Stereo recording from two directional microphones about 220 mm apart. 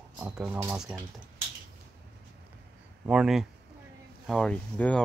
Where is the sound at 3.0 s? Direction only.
5° right (ahead or behind).